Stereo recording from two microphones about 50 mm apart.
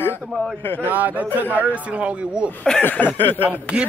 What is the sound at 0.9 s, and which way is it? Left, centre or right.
Speech, right.